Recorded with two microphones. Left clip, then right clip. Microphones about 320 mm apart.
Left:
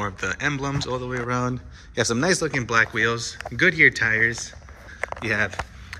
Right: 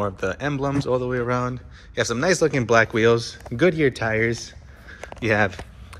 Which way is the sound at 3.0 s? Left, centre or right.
Right.